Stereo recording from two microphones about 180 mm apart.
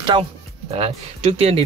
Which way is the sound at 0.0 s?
25° right (ahead or behind).